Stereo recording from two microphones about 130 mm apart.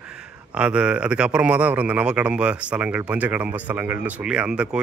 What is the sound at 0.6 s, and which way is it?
A man's voice, 10° right (ahead or behind).